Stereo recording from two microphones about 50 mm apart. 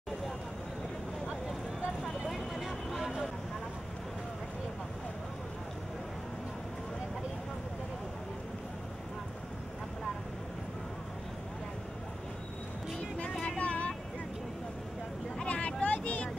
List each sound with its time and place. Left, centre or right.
2.2 s vehicle: centre
13.3 s vehicle: centre
15.4 s vehicle: left